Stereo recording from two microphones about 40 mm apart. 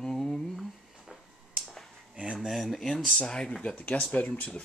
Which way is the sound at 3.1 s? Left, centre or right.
Left.